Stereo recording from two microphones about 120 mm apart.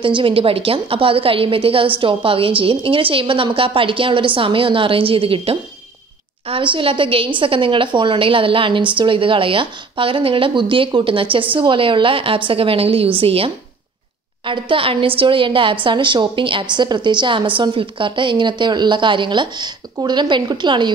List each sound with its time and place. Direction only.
0.0 s a woman's voice: 45° right (ahead or behind)